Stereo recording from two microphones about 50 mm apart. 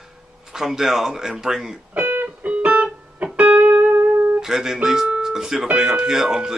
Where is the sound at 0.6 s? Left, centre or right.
Centre.